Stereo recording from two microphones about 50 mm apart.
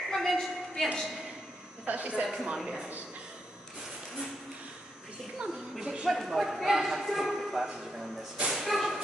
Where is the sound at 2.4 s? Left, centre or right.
Centre.